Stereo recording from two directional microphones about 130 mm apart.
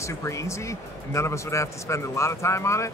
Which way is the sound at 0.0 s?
25° left (ahead or behind).